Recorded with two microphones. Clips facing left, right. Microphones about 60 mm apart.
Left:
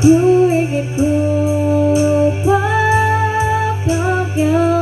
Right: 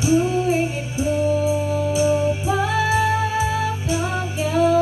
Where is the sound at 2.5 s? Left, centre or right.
Left.